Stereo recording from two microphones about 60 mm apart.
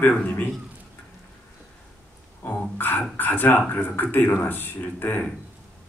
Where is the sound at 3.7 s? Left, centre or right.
Left.